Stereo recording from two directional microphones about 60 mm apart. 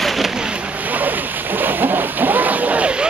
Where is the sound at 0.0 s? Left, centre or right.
Centre.